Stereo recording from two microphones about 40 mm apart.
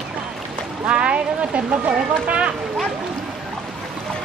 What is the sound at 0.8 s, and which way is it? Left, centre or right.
Speech, right.